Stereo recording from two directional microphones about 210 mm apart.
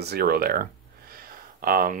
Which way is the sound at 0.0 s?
50° right (ahead or behind).